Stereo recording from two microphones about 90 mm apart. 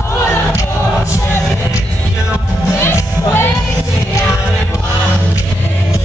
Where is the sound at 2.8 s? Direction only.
25° left (ahead or behind).